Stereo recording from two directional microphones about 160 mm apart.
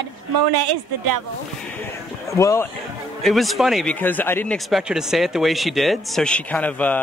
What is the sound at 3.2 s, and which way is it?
Speech, centre (ahead or behind).